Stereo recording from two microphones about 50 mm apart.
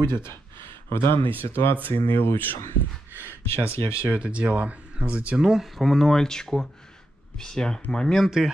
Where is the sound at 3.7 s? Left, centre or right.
Left.